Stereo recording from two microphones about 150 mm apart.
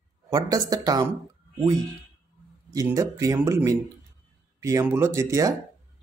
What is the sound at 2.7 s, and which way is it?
Speech, 25° right (ahead or behind).